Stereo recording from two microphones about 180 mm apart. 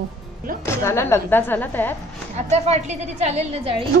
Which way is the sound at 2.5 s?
40° right (ahead or behind).